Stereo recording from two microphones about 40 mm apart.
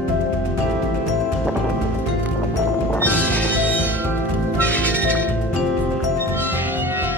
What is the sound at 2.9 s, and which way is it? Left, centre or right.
Music, left.